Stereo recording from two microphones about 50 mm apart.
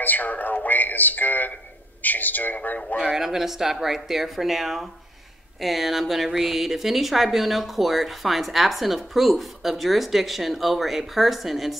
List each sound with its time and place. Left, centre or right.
0.0 s speech: left
3.0 s speech: centre